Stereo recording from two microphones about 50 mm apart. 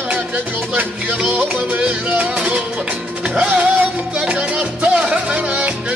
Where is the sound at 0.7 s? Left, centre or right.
Right.